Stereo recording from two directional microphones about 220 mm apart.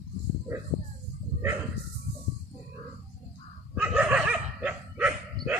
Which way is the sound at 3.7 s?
5° right (ahead or behind).